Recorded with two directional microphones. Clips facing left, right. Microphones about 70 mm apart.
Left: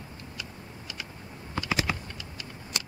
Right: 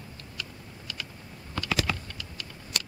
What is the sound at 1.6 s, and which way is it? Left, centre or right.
Typing, left.